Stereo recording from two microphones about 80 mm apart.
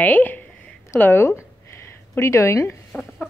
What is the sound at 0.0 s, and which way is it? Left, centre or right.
A woman's voice, left.